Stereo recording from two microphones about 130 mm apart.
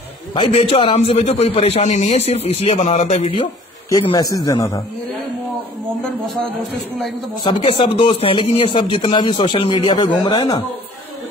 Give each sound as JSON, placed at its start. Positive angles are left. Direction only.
{"t": 0.3, "sound": "a man's voice", "side_deg": 45}
{"t": 4.1, "sound": "speech", "side_deg": 30}
{"t": 7.6, "sound": "speech", "side_deg": 40}